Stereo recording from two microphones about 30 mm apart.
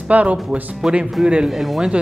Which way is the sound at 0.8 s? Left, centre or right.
Centre.